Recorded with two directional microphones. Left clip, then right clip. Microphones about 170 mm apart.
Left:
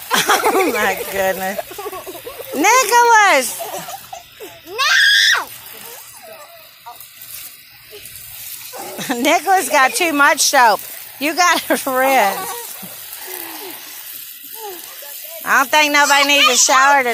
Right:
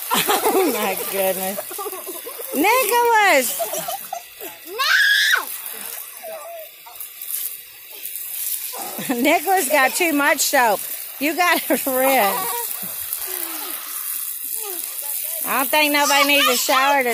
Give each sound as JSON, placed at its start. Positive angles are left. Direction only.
{"t": 0.1, "sound": "snake", "side_deg": 0}
{"t": 0.4, "sound": "speech", "side_deg": 5}
{"t": 1.3, "sound": "speech", "side_deg": 10}
{"t": 2.5, "sound": "speech", "side_deg": 0}
{"t": 4.7, "sound": "screaming", "side_deg": 20}
{"t": 9.0, "sound": "speech", "side_deg": -5}
{"t": 15.4, "sound": "speech", "side_deg": 0}